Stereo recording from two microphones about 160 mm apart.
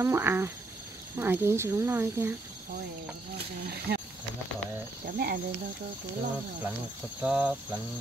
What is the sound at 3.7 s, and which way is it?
Speech, 75° right (ahead or behind).